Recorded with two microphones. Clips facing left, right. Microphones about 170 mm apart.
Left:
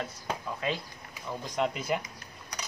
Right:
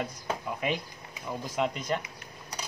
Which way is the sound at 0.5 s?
15° right (ahead or behind).